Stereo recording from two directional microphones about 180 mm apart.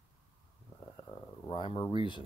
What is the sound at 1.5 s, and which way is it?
Speech, 30° left (ahead or behind).